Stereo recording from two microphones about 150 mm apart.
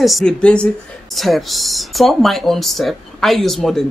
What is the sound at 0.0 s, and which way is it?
A woman's voice, centre (ahead or behind).